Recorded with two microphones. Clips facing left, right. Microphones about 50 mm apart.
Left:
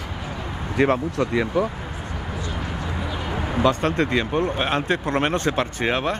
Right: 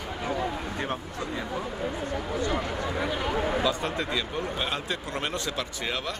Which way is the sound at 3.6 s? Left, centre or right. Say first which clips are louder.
Left 7 dB; left.